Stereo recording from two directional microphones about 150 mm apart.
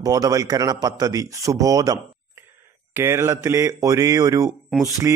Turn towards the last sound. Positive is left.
turn(degrees=-20)  # may be behind; listen again after turning